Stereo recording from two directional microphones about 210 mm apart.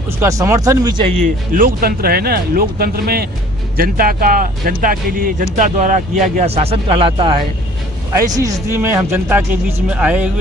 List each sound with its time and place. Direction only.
0.2 s speech: 15° right (ahead or behind)
1.2 s speech: 40° right (ahead or behind); by 7.4 s 25° right (ahead or behind)
8.2 s speech: 15° right (ahead or behind)